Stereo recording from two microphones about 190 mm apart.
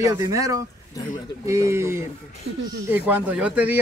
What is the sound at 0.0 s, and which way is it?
Speech, 15° right (ahead or behind).